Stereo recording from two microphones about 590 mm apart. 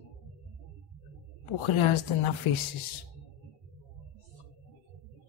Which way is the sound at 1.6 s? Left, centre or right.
Left.